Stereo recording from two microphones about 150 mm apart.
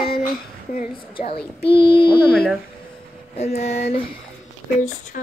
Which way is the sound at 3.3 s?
45° left (ahead or behind).